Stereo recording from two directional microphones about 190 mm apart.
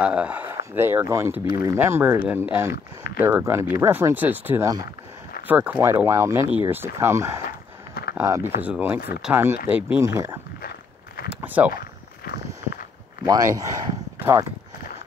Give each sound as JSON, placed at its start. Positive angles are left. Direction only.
{"t": 0.0, "sound": "speech", "side_deg": -5}
{"t": 11.4, "sound": "speech", "side_deg": -10}
{"t": 11.7, "sound": "a sound", "side_deg": 55}
{"t": 13.2, "sound": "speech", "side_deg": -20}